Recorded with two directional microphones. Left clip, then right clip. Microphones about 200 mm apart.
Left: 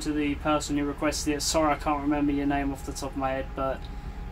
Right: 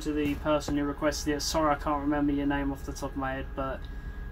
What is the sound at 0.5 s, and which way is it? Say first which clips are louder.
Speech: left 1 dB; 5° left (ahead or behind).